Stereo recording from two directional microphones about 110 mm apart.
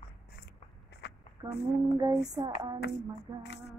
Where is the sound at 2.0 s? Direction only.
35° right (ahead or behind).